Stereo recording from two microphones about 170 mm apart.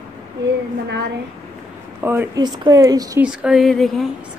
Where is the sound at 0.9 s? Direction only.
75° right (ahead or behind).